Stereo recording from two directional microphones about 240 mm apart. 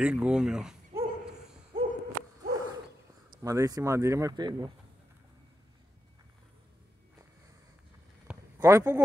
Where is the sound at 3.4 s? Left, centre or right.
Centre.